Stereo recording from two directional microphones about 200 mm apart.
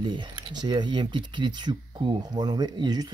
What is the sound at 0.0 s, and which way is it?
Speech, 25° right (ahead or behind).